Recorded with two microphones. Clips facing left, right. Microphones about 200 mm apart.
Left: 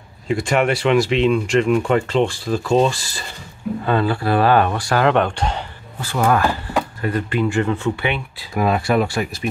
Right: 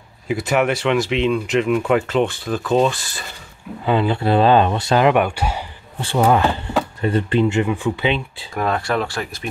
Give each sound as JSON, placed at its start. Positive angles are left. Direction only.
{"t": 0.3, "sound": "speech", "side_deg": -5}
{"t": 3.8, "sound": "speech", "side_deg": -15}
{"t": 5.9, "sound": "speech", "side_deg": -25}
{"t": 7.6, "sound": "speech", "side_deg": -15}
{"t": 8.5, "sound": "speech", "side_deg": 10}